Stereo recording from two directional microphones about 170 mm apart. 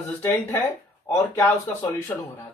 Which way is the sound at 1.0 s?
15° left (ahead or behind).